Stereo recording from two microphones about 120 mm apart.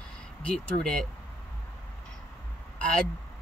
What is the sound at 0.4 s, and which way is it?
Speech, 5° left (ahead or behind).